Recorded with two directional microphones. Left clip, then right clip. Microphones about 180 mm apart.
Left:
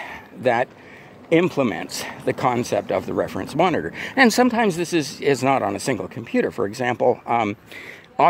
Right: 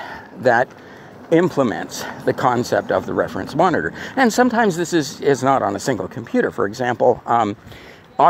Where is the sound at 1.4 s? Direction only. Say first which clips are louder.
Right 3 dB; 15° left (ahead or behind).